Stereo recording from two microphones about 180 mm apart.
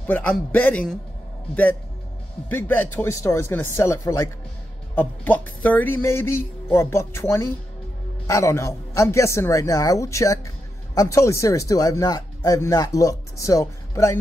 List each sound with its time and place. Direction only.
0.0 s speech: 10° left (ahead or behind)